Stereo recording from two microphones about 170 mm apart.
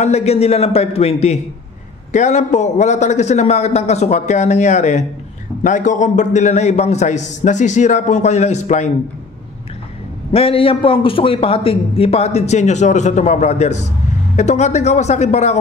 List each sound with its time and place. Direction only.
0.0 s a man's voice: 40° left (ahead or behind)
10.3 s a man's voice: 35° left (ahead or behind)